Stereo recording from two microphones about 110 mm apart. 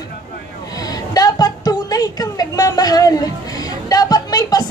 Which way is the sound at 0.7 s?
35° left (ahead or behind).